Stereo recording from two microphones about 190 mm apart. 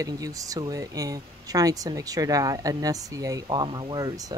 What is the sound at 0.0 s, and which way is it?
Speech, 20° right (ahead or behind).